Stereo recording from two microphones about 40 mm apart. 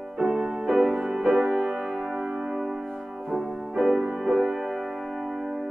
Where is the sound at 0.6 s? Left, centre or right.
Centre.